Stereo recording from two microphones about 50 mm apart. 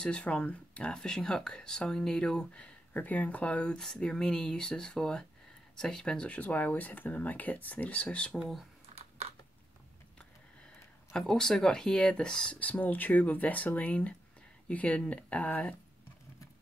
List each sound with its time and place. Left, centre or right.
0.0 s speech: left
3.0 s speech: left; by 6.2 s centre
6.2 s speech: left
11.1 s speech: centre
12.5 s speech: left